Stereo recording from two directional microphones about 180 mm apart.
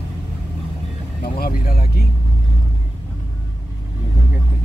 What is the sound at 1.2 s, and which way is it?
Speech, 55° left (ahead or behind).